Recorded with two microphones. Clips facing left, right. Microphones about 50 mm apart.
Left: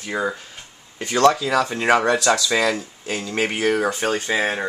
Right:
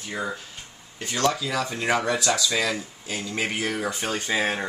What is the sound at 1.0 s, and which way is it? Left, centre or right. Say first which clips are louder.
Speech: left 8 dB; left.